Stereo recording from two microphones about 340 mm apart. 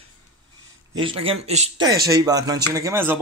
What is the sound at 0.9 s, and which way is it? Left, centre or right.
Speech, centre.